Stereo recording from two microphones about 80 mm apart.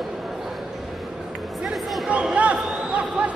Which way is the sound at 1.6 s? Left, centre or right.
Centre.